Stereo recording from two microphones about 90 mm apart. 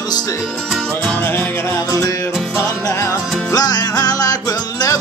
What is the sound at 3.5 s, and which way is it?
Music, 45° left (ahead or behind).